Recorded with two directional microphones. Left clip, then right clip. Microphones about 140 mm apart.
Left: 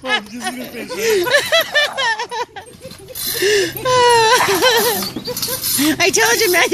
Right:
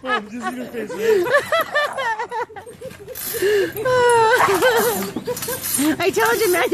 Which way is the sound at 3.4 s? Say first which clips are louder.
Left 2 dB; 20° left (ahead or behind).